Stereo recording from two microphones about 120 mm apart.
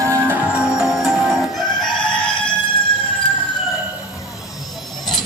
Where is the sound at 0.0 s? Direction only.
20° right (ahead or behind).